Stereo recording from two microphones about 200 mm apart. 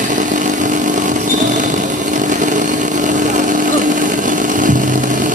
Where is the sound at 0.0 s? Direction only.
40° right (ahead or behind).